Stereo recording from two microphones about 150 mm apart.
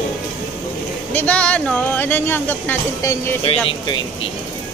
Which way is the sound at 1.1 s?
10° left (ahead or behind).